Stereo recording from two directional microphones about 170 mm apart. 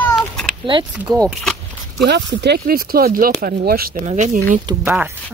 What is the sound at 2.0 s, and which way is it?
Speech, 85° right.